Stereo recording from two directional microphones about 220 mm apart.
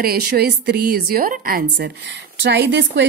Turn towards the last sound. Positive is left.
turn(degrees=-50)  # may be behind; listen again after turning